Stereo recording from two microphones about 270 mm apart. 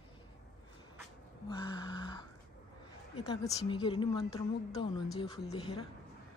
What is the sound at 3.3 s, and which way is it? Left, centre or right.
A woman's voice, centre.